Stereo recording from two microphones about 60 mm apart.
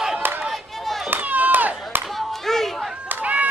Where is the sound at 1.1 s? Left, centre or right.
Right.